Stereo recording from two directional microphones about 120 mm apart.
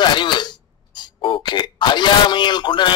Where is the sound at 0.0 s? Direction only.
40° left (ahead or behind).